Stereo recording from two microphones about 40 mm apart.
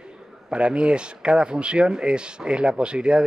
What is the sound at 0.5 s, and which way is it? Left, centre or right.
A man's voice, right.